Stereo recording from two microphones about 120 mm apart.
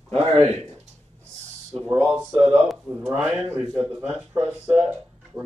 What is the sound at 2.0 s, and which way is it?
Speech, 5° right (ahead or behind).